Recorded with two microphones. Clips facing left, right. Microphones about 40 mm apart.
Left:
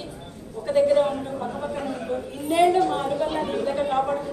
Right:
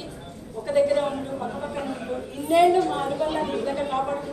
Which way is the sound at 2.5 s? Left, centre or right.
Centre.